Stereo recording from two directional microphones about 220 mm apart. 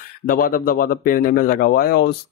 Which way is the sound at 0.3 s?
40° left (ahead or behind).